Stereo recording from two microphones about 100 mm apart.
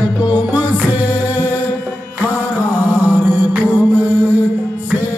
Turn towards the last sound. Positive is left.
turn(degrees=-25)  # may be behind; listen again after turning